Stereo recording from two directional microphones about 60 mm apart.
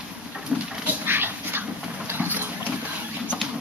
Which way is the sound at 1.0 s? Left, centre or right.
Right.